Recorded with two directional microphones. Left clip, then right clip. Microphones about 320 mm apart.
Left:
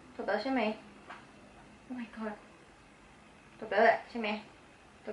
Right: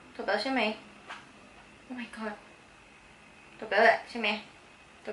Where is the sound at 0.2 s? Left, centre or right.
Centre.